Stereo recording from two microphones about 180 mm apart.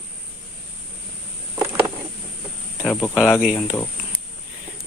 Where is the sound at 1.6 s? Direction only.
20° right (ahead or behind).